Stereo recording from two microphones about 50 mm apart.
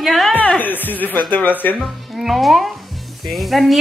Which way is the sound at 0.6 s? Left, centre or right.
Left.